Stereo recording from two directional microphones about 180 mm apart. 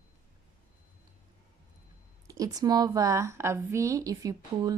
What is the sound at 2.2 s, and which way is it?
A woman's voice, 20° right (ahead or behind).